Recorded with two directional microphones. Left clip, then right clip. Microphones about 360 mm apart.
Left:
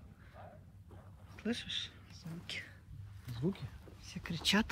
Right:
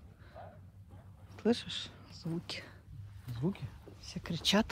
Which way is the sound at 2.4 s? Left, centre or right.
Centre.